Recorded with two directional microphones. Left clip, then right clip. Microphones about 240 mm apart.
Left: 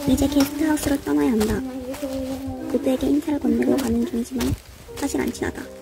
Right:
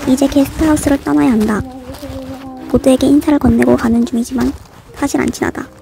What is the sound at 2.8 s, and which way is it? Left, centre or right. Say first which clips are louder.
Speech: right 12 dB; right.